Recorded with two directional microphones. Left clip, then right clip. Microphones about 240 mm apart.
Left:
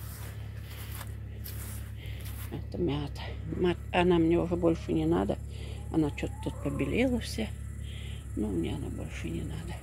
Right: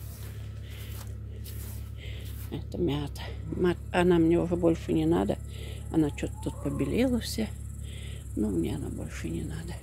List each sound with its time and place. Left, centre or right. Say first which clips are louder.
2.8 s speech: right 2 dB; centre